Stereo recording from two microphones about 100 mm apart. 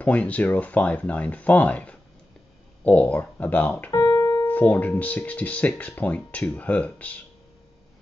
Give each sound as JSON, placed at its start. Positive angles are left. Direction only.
{"t": 0.0, "sound": "speech", "side_deg": 15}
{"t": 3.9, "sound": "keyboard", "side_deg": 40}
{"t": 4.5, "sound": "speech", "side_deg": 15}